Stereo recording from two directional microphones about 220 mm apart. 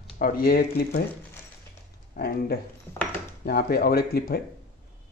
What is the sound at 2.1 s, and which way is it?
Speech, 45° left (ahead or behind).